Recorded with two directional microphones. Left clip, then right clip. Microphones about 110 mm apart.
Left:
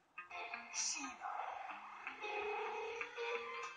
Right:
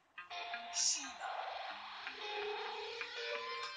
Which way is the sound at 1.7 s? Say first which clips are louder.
Right 3 dB; 25° right (ahead or behind).